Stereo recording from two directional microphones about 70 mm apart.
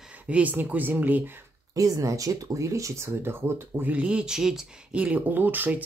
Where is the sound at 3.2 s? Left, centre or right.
Right.